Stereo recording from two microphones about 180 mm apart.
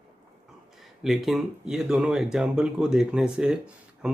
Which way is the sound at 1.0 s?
Centre (ahead or behind).